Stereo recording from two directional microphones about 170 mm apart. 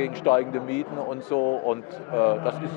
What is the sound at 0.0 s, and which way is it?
Speech, 15° left (ahead or behind).